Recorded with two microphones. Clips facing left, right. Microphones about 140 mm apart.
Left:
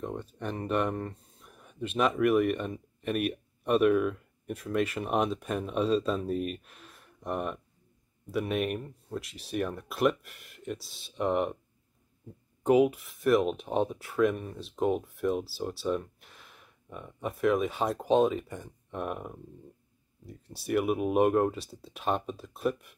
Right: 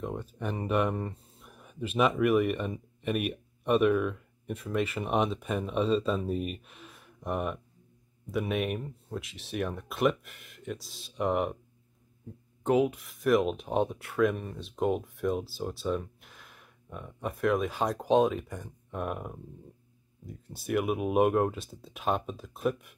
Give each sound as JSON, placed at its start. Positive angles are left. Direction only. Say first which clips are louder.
{"t": 0.0, "sound": "speech", "louder": "right 1 dB", "side_deg": 0}
{"t": 12.6, "sound": "speech", "louder": "left 3 dB", "side_deg": 10}